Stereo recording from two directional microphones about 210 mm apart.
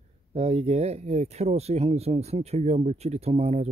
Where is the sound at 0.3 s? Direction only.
30° right (ahead or behind).